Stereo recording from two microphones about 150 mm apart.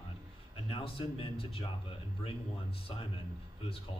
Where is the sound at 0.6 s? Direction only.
40° left (ahead or behind).